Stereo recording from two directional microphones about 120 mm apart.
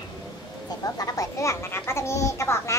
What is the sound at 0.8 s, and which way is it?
A child's voice, 30° left (ahead or behind).